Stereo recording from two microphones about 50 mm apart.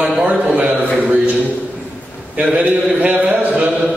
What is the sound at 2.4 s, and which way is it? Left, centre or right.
A man's voice, right.